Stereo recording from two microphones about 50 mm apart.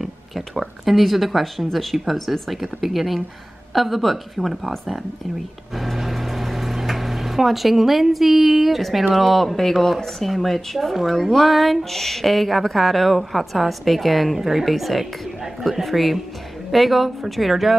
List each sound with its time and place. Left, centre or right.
0.0 s speech: centre
5.8 s microwave oven: centre
9.1 s speech: centre